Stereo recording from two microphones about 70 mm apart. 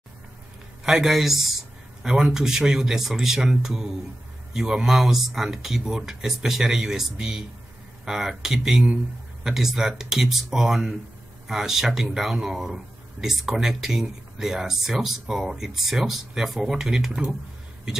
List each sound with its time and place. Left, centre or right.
0.8 s speech: centre
8.8 s speech: centre
9.5 s speech: centre